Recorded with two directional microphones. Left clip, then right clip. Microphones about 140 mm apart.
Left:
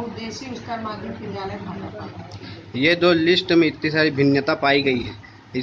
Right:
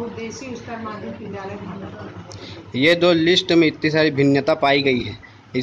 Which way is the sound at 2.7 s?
25° right (ahead or behind).